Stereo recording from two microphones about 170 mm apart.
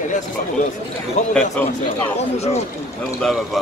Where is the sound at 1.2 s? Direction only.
45° left (ahead or behind).